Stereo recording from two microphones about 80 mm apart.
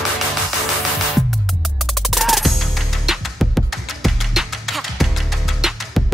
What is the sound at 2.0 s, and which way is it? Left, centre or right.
Music, centre.